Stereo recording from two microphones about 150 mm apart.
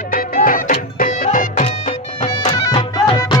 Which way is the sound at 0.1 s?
70° left (ahead or behind).